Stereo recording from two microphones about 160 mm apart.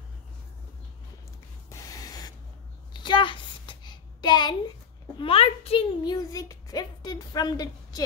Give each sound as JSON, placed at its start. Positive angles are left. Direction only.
{"t": 1.7, "sound": "sanding", "side_deg": 20}
{"t": 2.9, "sound": "a sound", "side_deg": 30}
{"t": 5.2, "sound": "a woman's voice", "side_deg": 35}